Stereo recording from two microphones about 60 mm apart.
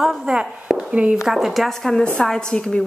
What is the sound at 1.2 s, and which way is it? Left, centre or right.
A woman's voice, centre.